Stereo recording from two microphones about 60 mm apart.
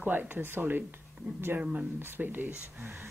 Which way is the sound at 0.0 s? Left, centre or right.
Right.